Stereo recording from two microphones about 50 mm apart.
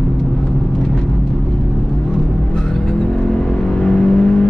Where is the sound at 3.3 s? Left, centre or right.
Centre.